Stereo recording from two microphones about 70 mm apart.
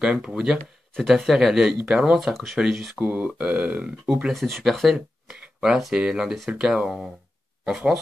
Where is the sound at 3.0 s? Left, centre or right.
Right.